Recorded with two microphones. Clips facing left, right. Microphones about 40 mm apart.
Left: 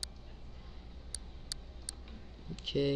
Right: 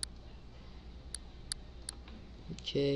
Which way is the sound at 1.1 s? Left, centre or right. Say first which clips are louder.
Even; centre.